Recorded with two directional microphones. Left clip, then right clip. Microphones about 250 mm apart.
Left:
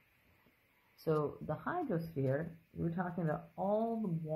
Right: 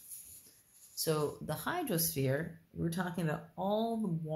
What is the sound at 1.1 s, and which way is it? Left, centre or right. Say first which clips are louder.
Speech: right 1 dB; right.